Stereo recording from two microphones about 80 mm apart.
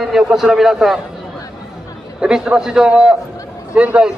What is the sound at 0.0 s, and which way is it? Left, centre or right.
A man's voice, centre.